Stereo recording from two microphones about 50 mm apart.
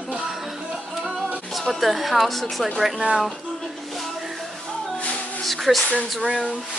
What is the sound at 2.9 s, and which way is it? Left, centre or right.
Speech, centre.